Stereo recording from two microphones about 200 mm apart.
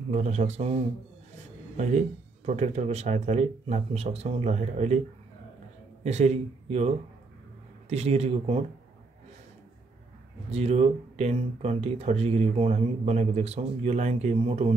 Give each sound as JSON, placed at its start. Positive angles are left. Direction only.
{"t": 0.1, "sound": "speech", "side_deg": -35}
{"t": 2.4, "sound": "speech", "side_deg": -35}
{"t": 6.0, "sound": "speech", "side_deg": -35}
{"t": 7.9, "sound": "speech", "side_deg": -30}
{"t": 10.5, "sound": "speech", "side_deg": -30}